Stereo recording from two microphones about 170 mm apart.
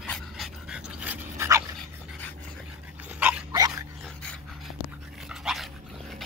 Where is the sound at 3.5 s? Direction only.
20° right (ahead or behind).